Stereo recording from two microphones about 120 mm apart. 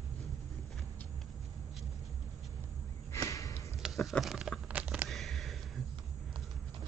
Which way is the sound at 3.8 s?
5° right (ahead or behind).